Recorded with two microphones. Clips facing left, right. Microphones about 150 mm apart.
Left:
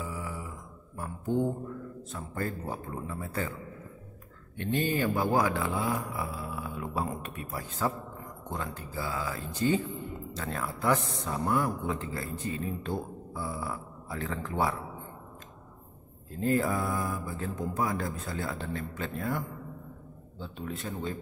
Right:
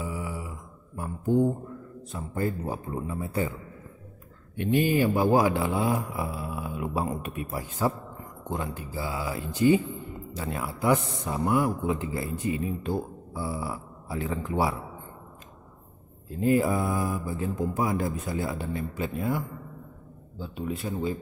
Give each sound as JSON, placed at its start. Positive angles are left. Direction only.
{"t": 0.0, "sound": "mantra", "side_deg": -15}
{"t": 0.9, "sound": "a sound", "side_deg": -10}
{"t": 2.1, "sound": "speech", "side_deg": -15}
{"t": 4.6, "sound": "speech", "side_deg": -15}
{"t": 16.3, "sound": "speech", "side_deg": -10}